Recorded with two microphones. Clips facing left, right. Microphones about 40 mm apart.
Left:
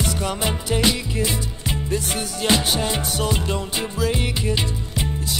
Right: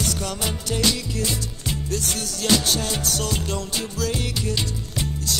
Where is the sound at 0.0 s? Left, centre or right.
Centre.